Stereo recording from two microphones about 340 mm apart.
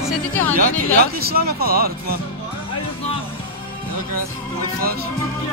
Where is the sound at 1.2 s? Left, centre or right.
Right.